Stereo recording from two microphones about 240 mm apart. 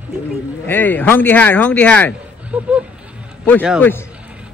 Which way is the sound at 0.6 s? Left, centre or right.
Centre.